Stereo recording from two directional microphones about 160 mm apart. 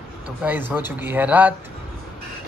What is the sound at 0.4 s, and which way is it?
Speech, 10° right (ahead or behind).